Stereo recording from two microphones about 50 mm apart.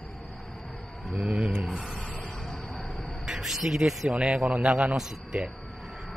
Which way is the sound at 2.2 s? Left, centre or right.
Centre.